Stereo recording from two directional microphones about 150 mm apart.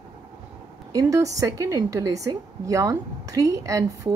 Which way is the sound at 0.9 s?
20° right (ahead or behind).